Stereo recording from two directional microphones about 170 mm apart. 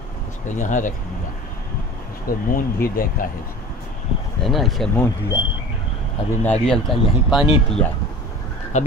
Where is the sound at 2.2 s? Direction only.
55° left (ahead or behind).